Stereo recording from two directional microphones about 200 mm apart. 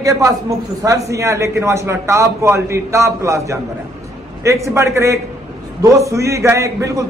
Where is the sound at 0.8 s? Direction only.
15° right (ahead or behind).